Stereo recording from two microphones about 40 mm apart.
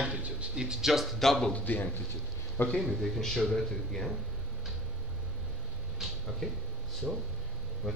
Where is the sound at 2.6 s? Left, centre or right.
Left.